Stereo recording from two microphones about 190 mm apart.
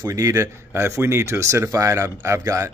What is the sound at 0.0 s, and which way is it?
Speech, 15° right (ahead or behind).